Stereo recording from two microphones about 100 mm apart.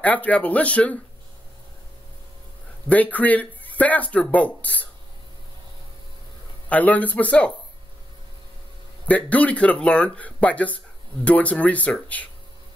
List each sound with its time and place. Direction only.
0.0 s speech: 15° left (ahead or behind)
2.9 s speech: 15° left (ahead or behind)
6.7 s speech: 15° left (ahead or behind)
9.0 s speech: 15° left (ahead or behind)